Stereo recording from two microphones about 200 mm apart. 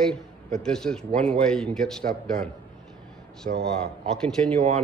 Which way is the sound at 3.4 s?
40° right (ahead or behind).